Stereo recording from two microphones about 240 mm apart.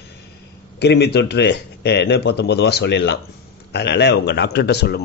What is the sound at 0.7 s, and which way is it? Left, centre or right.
A man's voice, left.